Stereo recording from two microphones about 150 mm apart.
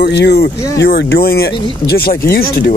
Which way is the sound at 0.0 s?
90° left.